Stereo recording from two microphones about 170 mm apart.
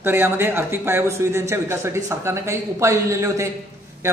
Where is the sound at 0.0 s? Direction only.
15° right (ahead or behind).